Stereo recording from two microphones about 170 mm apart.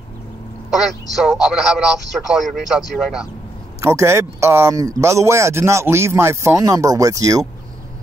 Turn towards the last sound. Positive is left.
turn(degrees=-20)  # may be behind; listen again after turning